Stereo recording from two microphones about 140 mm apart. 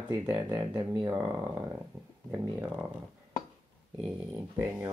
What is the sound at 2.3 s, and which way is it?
Speech, 15° right (ahead or behind).